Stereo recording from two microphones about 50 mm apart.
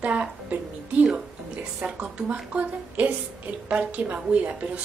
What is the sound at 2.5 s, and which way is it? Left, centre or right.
A woman's voice, right.